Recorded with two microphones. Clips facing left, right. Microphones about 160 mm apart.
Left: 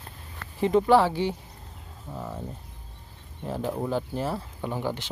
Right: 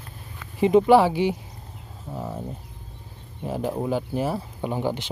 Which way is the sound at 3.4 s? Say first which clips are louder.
Right 3 dB; 10° right (ahead or behind).